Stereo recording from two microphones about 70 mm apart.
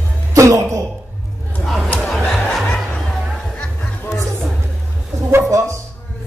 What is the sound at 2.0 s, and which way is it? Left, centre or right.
Music, centre.